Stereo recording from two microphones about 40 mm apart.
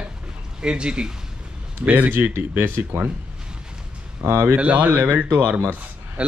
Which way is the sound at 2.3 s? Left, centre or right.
Right.